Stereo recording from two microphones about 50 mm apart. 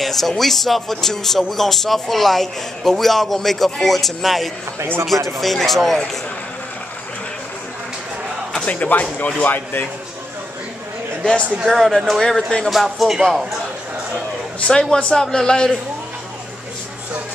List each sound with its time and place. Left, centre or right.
0.0 s speech: centre
8.5 s speech: left
11.6 s speech: centre
12.6 s speech: centre
14.7 s a man's voice: centre